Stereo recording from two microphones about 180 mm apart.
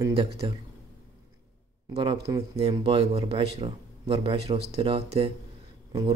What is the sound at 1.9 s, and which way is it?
Speech, 30° right (ahead or behind).